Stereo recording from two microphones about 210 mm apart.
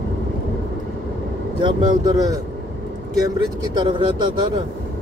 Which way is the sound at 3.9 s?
20° right (ahead or behind).